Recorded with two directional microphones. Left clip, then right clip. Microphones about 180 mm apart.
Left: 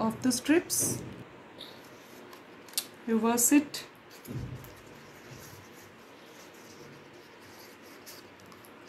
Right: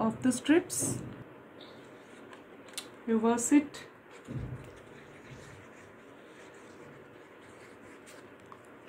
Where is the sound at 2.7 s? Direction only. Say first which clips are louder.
Left 1 dB; 15° left (ahead or behind).